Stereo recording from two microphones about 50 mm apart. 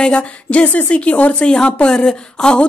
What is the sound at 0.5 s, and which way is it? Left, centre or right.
A woman's voice, left.